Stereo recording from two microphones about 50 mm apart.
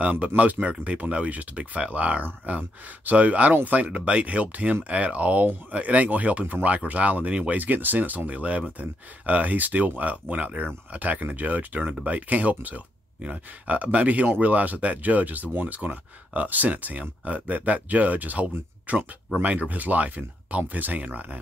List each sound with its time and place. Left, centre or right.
0.0 s speech: right